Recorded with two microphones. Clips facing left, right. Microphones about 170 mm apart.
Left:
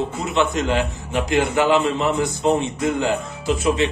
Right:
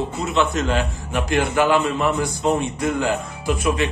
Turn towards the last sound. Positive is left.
turn(degrees=25)  # may be behind; listen again after turning